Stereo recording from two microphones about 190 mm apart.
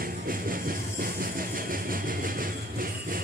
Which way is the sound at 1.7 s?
45° right (ahead or behind).